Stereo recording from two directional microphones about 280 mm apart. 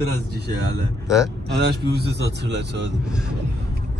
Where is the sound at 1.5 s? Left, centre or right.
Right.